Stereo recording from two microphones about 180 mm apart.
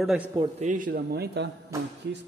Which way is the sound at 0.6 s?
45° right (ahead or behind).